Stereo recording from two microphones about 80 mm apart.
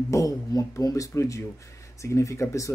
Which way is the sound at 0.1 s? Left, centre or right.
Left.